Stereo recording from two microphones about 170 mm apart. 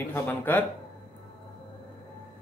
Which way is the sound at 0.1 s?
10° left (ahead or behind).